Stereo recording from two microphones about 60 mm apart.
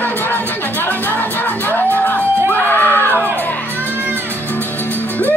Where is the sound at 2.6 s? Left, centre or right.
Left.